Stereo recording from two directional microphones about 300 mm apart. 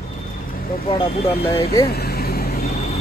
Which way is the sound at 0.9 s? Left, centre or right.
Centre.